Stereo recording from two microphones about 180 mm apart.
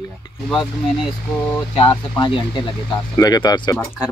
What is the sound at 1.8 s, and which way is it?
Speech, 25° left (ahead or behind).